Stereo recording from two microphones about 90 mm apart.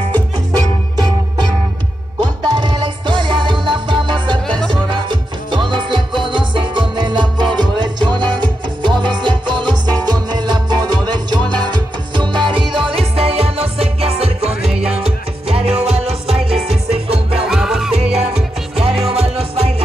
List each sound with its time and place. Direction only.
2.1 s music: 50° right (ahead or behind)
5.5 s music: 60° right (ahead or behind); by 14.3 s 90° right
14.5 s music: 10° right (ahead or behind)
15.0 s music: 90° right
17.5 s music: 5° right (ahead or behind)
18.8 s music: 90° right